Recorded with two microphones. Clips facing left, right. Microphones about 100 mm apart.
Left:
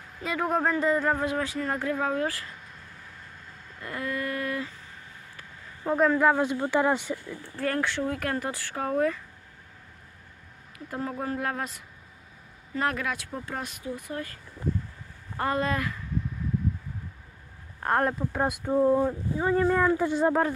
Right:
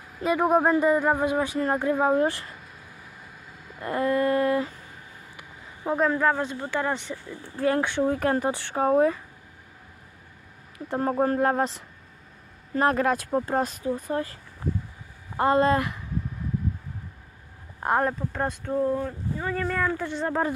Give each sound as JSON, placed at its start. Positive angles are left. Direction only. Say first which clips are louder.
{"t": 0.2, "sound": "speech", "louder": "right 6 dB", "side_deg": -15}
{"t": 3.8, "sound": "female singing", "louder": "right 9 dB", "side_deg": -35}
{"t": 5.4, "sound": "a sound", "louder": "right 1 dB", "side_deg": -15}
{"t": 5.9, "sound": "speech", "louder": "left 1 dB", "side_deg": 0}
{"t": 6.2, "sound": "speech", "louder": "left 2 dB", "side_deg": 15}
{"t": 7.2, "sound": "speech", "louder": "right 10 dB", "side_deg": -15}
{"t": 11.0, "sound": "speech", "louder": "right 8 dB", "side_deg": -45}
{"t": 17.8, "sound": "speech", "louder": "right 2 dB", "side_deg": -15}
{"t": 18.3, "sound": "speech", "louder": "left 2 dB", "side_deg": 10}